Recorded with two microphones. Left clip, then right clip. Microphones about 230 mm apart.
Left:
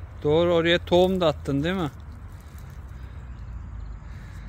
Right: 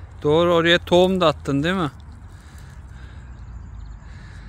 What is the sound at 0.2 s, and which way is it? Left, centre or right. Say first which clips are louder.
Speech: right 4 dB; right.